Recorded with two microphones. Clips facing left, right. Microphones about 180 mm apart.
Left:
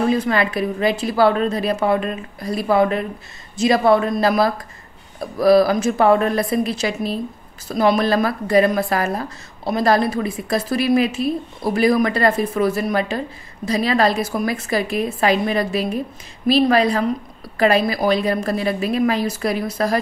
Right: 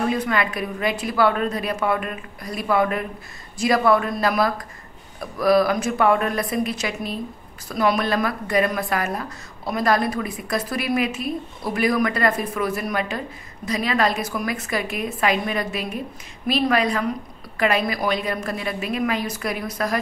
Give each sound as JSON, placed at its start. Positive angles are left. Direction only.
{"t": 0.1, "sound": "a woman's voice", "side_deg": 30}